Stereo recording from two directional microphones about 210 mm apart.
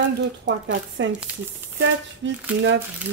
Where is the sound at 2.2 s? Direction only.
60° right (ahead or behind).